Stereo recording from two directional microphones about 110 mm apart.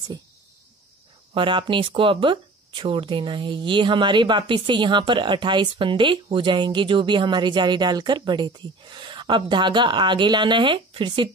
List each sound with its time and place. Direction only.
1.3 s speech: 50° right (ahead or behind)